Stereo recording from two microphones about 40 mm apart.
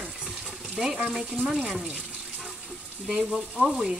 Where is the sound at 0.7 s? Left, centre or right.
Centre.